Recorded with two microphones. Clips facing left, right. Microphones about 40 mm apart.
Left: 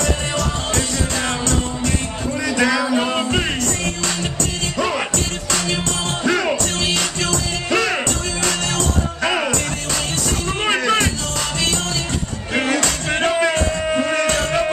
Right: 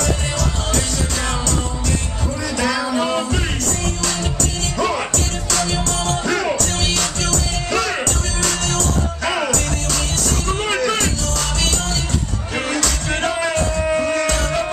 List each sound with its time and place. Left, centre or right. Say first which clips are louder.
2.5 s music: left 3 dB; left
2.8 s music: left 1 dB; centre
4.7 s music: right 1 dB; centre
5.5 s music: right 1 dB; left
10.6 s music: left 3 dB; left
12.5 s music: left 3 dB; left